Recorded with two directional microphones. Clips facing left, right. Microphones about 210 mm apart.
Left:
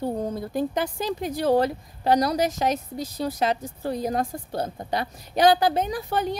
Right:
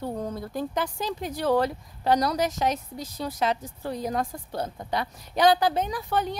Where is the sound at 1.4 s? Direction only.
40° left (ahead or behind).